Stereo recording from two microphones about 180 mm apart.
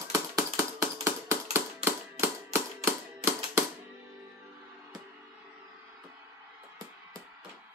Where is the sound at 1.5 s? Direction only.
15° right (ahead or behind).